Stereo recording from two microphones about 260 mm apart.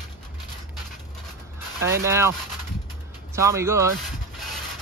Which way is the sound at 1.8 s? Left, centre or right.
Centre.